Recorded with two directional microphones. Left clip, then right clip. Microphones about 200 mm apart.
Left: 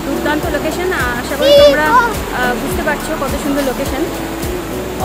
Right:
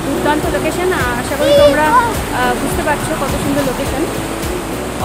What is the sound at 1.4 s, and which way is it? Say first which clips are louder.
Speech: left 2 dB; 25° left (ahead or behind).